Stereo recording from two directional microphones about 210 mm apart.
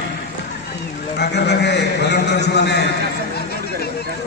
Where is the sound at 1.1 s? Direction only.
55° left (ahead or behind).